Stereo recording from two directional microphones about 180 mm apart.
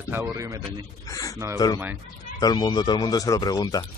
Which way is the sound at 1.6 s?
20° left (ahead or behind).